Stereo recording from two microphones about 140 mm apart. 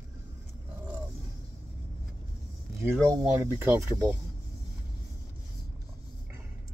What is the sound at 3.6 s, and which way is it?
Speech, 20° right (ahead or behind).